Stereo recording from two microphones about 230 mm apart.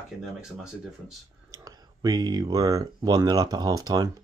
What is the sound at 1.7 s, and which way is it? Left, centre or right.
Speech, centre.